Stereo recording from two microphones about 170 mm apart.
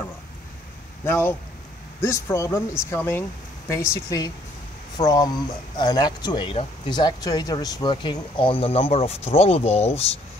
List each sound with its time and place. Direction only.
1.0 s speech: 15° left (ahead or behind); by 10.0 s 35° left (ahead or behind)